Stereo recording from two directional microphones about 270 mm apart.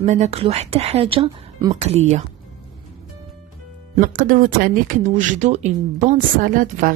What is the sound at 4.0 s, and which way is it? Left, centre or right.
Speech, right.